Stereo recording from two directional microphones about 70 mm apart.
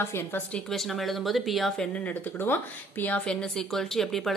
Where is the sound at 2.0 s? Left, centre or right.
Left.